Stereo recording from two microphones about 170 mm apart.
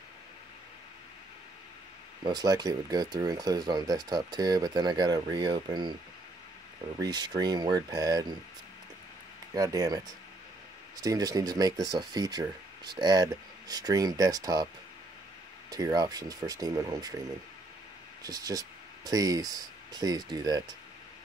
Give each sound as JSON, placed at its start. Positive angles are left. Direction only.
{"t": 2.2, "sound": "speech", "side_deg": -25}
{"t": 7.0, "sound": "speech", "side_deg": -25}
{"t": 9.5, "sound": "speech", "side_deg": -20}
{"t": 15.7, "sound": "speech", "side_deg": -25}
{"t": 18.2, "sound": "speech", "side_deg": -20}